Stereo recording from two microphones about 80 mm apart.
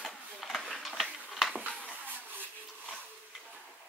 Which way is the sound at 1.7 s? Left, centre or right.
Centre.